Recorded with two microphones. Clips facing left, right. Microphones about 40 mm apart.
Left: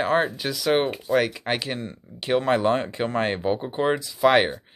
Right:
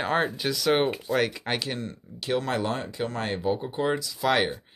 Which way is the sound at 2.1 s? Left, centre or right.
Left.